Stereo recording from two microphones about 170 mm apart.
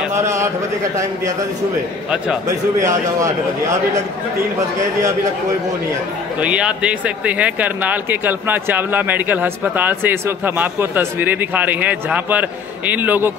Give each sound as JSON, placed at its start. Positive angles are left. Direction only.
{"t": 0.1, "sound": "a sound", "side_deg": -15}
{"t": 2.4, "sound": "a man's voice", "side_deg": -20}
{"t": 6.4, "sound": "speech", "side_deg": -5}